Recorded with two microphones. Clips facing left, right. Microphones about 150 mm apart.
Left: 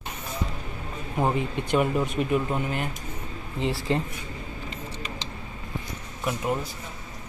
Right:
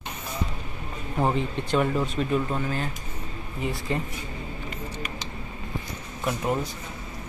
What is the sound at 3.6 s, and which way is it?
Speech, 30° left (ahead or behind).